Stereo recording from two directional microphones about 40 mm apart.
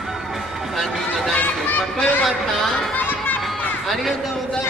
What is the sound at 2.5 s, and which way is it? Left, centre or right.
Speech, centre.